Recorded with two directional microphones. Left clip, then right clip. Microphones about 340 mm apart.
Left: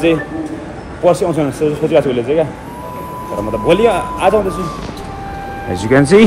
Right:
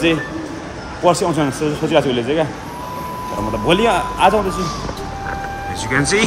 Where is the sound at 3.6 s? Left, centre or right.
Centre.